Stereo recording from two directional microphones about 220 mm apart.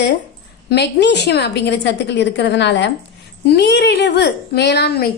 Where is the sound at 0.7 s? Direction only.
50° left (ahead or behind).